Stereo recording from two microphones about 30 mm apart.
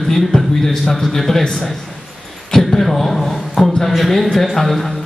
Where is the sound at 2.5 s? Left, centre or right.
Centre.